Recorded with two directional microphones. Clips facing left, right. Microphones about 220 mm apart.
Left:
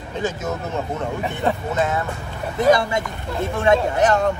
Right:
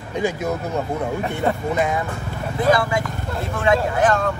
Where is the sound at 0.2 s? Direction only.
15° right (ahead or behind).